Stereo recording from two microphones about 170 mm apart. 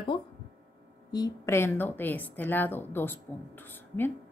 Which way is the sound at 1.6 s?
10° left (ahead or behind).